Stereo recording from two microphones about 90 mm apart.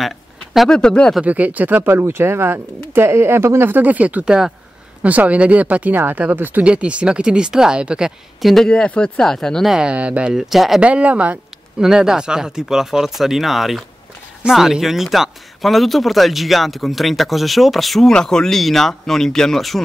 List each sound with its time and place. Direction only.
0.0 s a sound: centre (ahead or behind)
1.2 s speech: 15° right (ahead or behind); by 8.6 s centre (ahead or behind)
8.6 s speech: 10° left (ahead or behind)
9.8 s speech: 15° right (ahead or behind)
10.8 s speech: 15° right (ahead or behind); by 19.8 s 5° left (ahead or behind)